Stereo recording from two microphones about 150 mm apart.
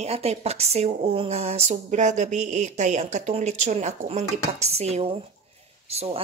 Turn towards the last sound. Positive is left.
turn(degrees=-40)  # may be behind; listen again after turning